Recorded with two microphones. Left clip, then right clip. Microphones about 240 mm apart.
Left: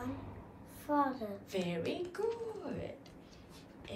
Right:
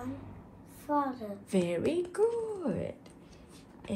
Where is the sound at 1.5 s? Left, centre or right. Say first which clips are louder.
Right 8 dB; right.